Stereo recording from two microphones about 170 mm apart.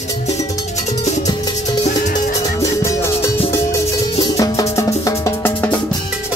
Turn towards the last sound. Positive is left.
turn(degrees=15)  # may be behind; listen again after turning